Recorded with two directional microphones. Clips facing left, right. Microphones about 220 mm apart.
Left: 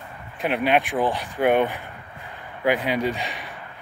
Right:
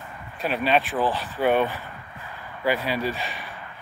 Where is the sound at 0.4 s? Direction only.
15° left (ahead or behind).